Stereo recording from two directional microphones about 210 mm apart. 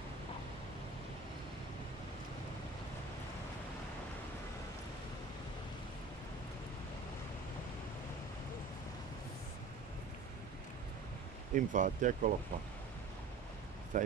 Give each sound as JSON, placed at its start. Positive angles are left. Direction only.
{"t": 11.5, "sound": "speech", "side_deg": -40}
{"t": 13.9, "sound": "speech", "side_deg": -35}